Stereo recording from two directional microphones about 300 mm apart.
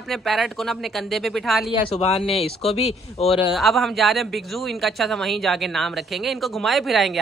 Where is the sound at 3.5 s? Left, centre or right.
Centre.